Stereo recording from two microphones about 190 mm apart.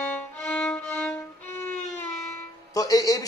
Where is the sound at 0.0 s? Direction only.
10° left (ahead or behind).